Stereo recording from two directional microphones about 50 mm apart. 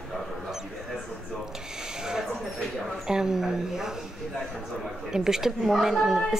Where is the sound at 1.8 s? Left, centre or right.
Centre.